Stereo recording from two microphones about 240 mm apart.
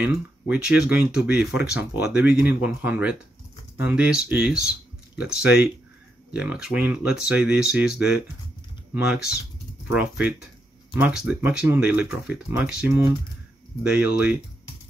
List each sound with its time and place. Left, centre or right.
0.0 s speech: centre